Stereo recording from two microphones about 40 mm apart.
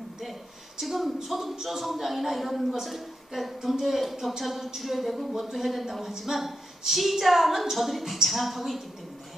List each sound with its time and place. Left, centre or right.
0.7 s speech: centre